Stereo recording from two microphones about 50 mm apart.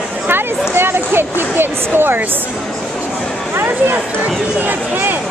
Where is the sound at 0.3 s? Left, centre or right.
Right.